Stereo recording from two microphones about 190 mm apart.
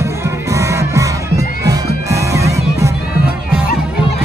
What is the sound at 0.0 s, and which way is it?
Music, 15° right (ahead or behind).